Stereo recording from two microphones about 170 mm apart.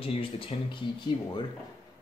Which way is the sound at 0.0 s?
35° left (ahead or behind).